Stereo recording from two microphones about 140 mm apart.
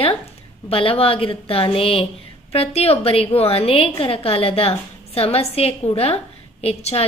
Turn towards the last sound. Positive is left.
turn(degrees=45)  # may be behind; listen again after turning